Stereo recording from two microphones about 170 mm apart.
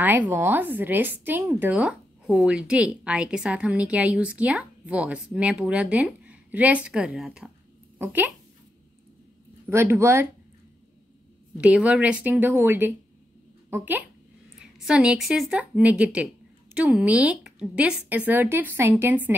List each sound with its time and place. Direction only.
0.0 s speech: 10° right (ahead or behind)
9.7 s speech: 15° right (ahead or behind)
11.6 s a child's voice: 10° right (ahead or behind)